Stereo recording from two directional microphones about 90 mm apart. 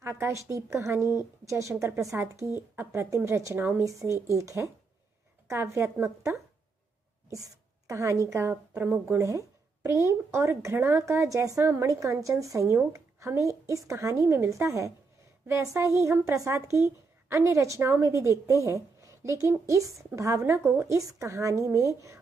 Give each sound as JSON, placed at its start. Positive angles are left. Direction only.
{"t": 0.0, "sound": "a woman's voice", "side_deg": -30}